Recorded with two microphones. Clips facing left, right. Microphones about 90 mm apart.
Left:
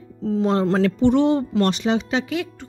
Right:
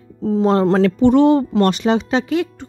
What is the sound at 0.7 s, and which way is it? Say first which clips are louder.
Speech: right 4 dB; 60° right (ahead or behind).